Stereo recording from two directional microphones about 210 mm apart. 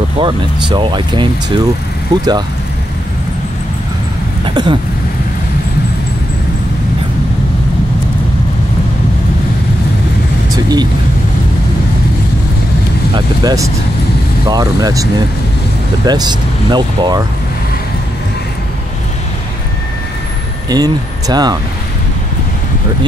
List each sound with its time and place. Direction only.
0.2 s speech: 25° right (ahead or behind)
4.5 s speech: 25° right (ahead or behind)
10.5 s speech: 20° right (ahead or behind)
13.1 s speech: 20° right (ahead or behind)
20.7 s speech: 20° right (ahead or behind)